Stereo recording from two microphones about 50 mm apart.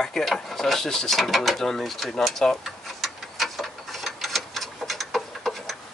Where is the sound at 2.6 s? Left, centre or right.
Centre.